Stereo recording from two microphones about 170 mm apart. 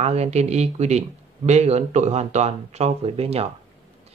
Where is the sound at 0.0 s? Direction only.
40° right (ahead or behind).